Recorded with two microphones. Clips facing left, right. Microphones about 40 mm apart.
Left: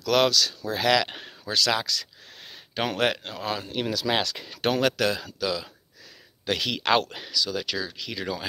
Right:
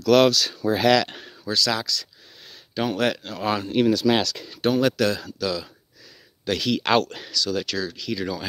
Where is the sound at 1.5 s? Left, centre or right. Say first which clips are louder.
Even; left.